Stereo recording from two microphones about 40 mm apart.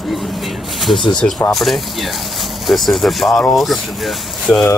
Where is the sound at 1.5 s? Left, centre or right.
Centre.